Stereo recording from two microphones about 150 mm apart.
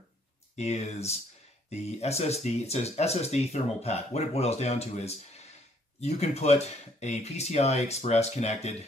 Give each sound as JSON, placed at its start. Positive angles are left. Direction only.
{"t": 0.6, "sound": "speech", "side_deg": 45}